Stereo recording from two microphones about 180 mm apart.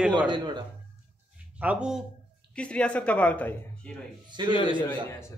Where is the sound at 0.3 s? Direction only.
25° right (ahead or behind).